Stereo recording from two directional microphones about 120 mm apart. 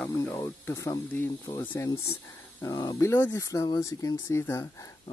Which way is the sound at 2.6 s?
35° left (ahead or behind).